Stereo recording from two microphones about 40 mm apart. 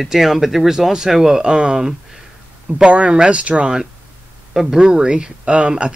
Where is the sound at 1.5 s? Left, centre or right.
Right.